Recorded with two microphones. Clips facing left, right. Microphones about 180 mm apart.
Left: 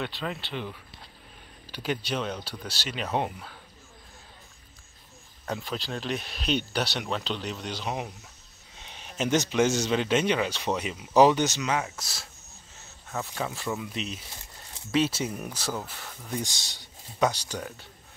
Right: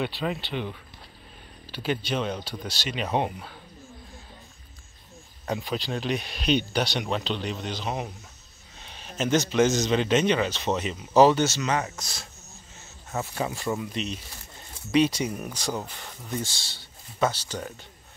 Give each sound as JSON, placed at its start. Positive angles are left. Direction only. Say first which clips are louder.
{"t": 0.0, "sound": "speech", "louder": "right 4 dB", "side_deg": -5}
{"t": 1.8, "sound": "speech", "louder": "right 2 dB", "side_deg": 10}
{"t": 2.1, "sound": "speech", "louder": "right 3 dB", "side_deg": -5}
{"t": 5.4, "sound": "speech", "louder": "right 3 dB", "side_deg": -5}
{"t": 8.8, "sound": "a sound", "louder": "right 1 dB", "side_deg": 15}
{"t": 9.2, "sound": "speech", "louder": "right 2 dB", "side_deg": 15}
{"t": 16.4, "sound": "speech", "louder": "even", "side_deg": 15}